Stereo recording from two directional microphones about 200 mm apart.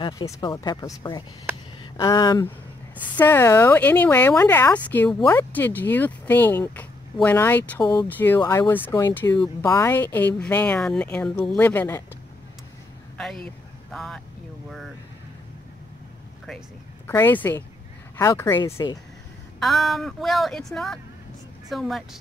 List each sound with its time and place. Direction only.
0.0 s speech: 20° left (ahead or behind)
7.8 s speech: 20° left (ahead or behind)
8.1 s speech: 10° left (ahead or behind)
13.2 s speech: centre (ahead or behind)
17.0 s speech: 10° left (ahead or behind)
19.6 s speech: centre (ahead or behind)